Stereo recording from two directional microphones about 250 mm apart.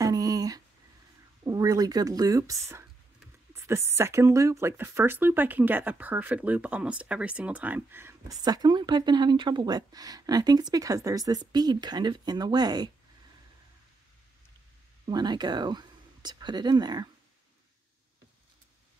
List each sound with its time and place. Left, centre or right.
0.0 s a sound: centre
1.4 s speech: centre
15.0 s speech: centre